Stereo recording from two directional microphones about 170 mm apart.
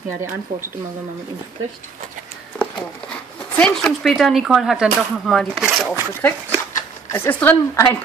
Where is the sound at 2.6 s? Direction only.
5° left (ahead or behind).